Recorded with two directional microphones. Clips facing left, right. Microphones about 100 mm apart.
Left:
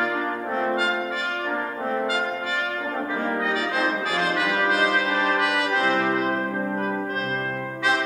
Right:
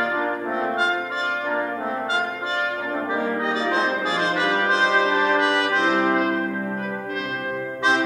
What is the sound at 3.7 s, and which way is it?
Brass instrument, 25° right (ahead or behind).